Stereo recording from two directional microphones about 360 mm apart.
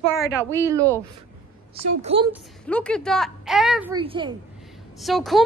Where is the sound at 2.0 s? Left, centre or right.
Centre.